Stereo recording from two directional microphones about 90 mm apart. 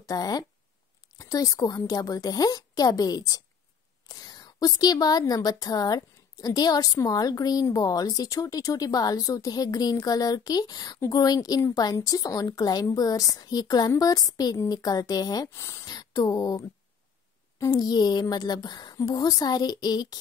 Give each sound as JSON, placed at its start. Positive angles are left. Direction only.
{"t": 0.0, "sound": "a woman's voice", "side_deg": 45}